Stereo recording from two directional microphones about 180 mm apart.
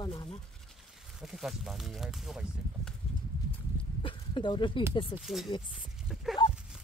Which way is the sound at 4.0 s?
30° left (ahead or behind).